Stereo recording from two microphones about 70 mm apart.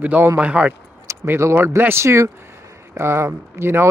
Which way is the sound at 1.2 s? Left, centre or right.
Right.